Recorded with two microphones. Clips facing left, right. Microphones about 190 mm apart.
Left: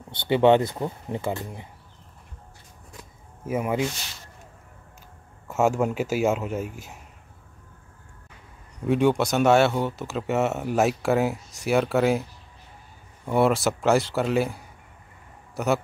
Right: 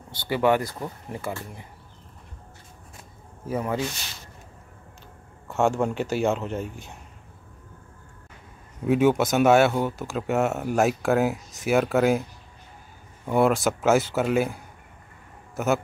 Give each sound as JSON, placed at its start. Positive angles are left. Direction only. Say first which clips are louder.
{"t": 0.3, "sound": "speech", "louder": "left 4 dB", "side_deg": 25}
{"t": 3.5, "sound": "speech", "louder": "left 2 dB", "side_deg": 10}
{"t": 5.5, "sound": "speech", "louder": "left 1 dB", "side_deg": 5}
{"t": 8.7, "sound": "a man's voice", "louder": "right 1 dB", "side_deg": -5}